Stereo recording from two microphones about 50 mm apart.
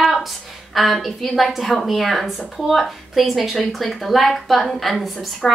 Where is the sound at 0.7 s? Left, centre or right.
Centre.